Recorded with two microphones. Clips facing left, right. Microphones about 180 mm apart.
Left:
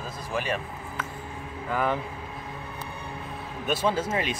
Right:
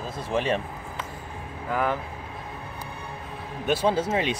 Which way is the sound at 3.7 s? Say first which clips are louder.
Right 3 dB; 15° right (ahead or behind).